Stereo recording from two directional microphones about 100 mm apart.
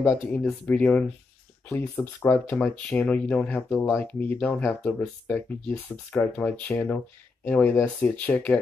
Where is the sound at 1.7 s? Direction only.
25° left (ahead or behind).